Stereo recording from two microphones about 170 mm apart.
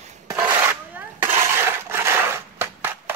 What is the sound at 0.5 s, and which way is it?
Coin, 10° right (ahead or behind).